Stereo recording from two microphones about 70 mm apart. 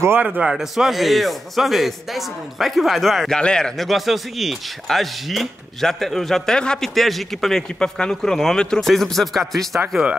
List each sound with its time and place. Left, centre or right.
0.4 s a man's voice: centre
9.8 s speech: centre